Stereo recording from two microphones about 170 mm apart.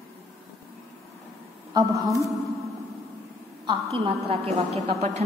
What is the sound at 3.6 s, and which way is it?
A woman's voice, 30° right (ahead or behind).